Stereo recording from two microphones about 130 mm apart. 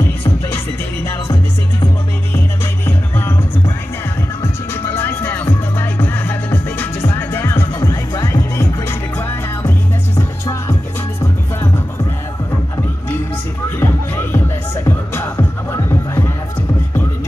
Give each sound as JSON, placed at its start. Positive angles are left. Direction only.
{"t": 2.3, "sound": "music", "side_deg": 15}
{"t": 4.4, "sound": "music", "side_deg": 20}
{"t": 13.7, "sound": "music", "side_deg": 15}